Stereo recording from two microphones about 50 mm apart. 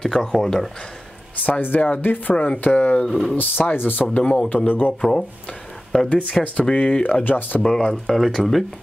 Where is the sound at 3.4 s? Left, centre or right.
Left.